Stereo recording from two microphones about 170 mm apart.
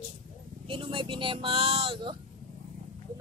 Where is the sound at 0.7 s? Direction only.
30° right (ahead or behind).